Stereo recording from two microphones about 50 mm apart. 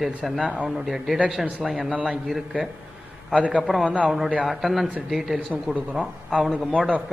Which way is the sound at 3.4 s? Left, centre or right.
Right.